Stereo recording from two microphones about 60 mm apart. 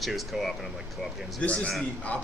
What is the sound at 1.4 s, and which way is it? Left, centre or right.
Speech, left.